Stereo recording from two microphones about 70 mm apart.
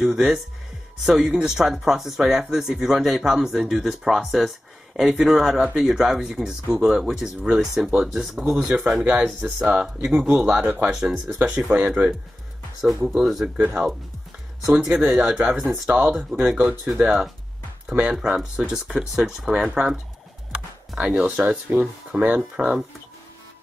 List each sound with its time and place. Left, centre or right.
0.0 s speech: centre
10.9 s speech: centre
11.3 s speech: centre
14.7 s speech: centre
21.0 s speech: centre
22.6 s speech: centre